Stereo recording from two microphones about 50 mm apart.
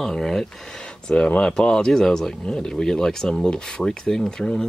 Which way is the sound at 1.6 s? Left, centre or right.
Centre.